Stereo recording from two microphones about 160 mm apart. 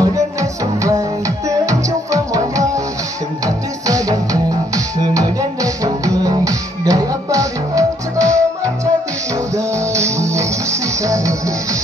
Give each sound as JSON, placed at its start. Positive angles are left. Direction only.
{"t": 0.0, "sound": "music", "side_deg": -20}
{"t": 3.8, "sound": "music", "side_deg": -20}
{"t": 9.6, "sound": "music", "side_deg": -20}